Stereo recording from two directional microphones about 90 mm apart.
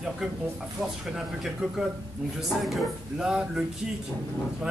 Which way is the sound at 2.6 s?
5° right (ahead or behind).